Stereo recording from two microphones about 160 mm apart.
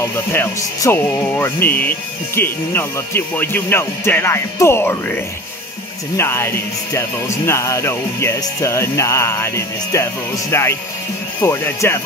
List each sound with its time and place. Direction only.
0.0 s speech: 15° left (ahead or behind)
6.1 s speech: 15° left (ahead or behind)